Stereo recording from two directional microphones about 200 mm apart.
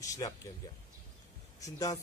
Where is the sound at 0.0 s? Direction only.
15° left (ahead or behind).